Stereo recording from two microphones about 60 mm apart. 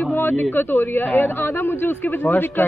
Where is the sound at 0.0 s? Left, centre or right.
Left.